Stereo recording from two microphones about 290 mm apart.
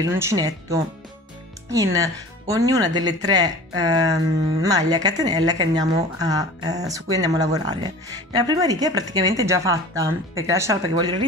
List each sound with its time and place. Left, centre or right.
0.0 s speech: centre